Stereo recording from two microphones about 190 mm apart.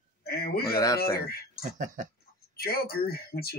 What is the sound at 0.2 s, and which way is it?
Speech, 55° left (ahead or behind).